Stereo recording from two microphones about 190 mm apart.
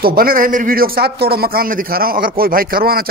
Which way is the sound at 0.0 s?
50° right (ahead or behind).